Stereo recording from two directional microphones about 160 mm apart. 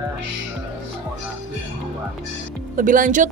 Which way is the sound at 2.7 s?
55° right (ahead or behind).